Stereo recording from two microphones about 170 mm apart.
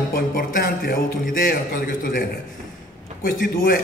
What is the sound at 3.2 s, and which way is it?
Speech, 60° left (ahead or behind).